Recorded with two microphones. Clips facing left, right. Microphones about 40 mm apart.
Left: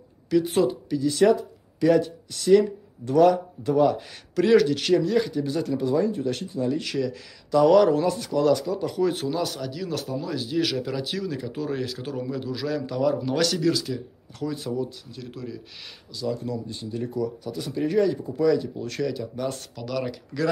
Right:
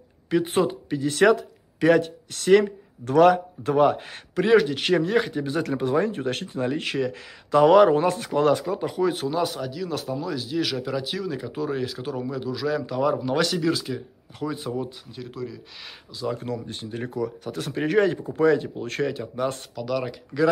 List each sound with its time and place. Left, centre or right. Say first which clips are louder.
0.3 s speech: left 1 dB; right
1.2 s speech: right 2 dB; right
4.4 s speech: even; right
4.9 s speech: even; right
5.6 s speech: right 1 dB; right
8.9 s speech: right 1 dB; centre
15.2 s speech: right 2 dB; centre
16.3 s speech: even; right
19.7 s speech: right 2 dB; centre